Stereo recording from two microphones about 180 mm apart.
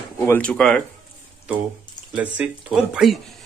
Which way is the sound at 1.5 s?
5° right (ahead or behind).